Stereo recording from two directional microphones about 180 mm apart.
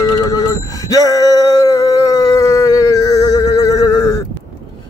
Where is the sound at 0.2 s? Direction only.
20° left (ahead or behind).